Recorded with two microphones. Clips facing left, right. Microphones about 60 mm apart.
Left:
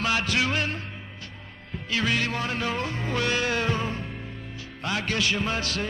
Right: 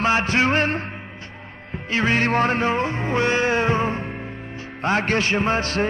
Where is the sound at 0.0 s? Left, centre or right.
Right.